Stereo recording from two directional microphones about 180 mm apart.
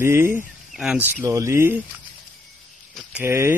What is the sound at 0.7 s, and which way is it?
Speech, 5° right (ahead or behind).